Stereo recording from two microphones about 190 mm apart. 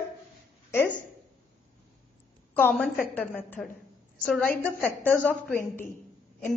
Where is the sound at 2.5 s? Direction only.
10° left (ahead or behind).